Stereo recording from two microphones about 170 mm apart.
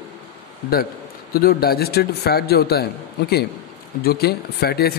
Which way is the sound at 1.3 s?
65° left (ahead or behind).